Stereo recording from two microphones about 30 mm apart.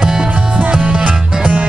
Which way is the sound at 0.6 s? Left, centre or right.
Right.